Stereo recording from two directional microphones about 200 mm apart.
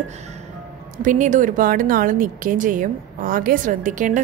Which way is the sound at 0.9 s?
40° right (ahead or behind).